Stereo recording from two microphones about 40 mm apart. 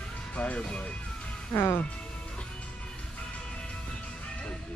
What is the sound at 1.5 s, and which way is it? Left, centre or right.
Speech, left.